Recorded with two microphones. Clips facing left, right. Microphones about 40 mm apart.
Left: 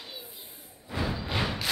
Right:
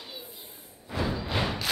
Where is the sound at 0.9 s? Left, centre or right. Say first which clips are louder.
Right 1 dB; centre.